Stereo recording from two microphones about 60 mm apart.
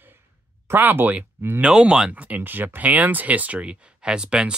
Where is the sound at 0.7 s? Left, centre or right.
Right.